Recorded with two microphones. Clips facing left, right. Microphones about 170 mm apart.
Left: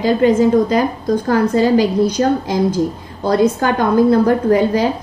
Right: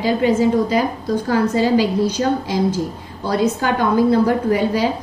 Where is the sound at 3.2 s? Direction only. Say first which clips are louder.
Left 4 dB; 50° left (ahead or behind).